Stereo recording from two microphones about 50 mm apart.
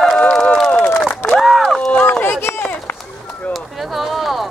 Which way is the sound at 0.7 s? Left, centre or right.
Left.